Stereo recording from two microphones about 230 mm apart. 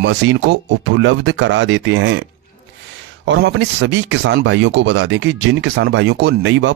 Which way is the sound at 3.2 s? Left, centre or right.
Right.